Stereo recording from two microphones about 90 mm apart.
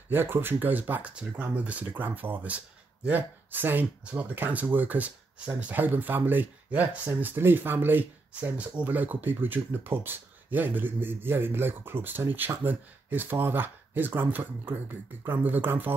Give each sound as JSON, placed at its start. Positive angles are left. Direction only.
{"t": 0.1, "sound": "speech", "side_deg": -25}